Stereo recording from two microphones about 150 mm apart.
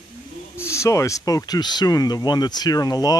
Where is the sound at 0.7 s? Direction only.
20° left (ahead or behind).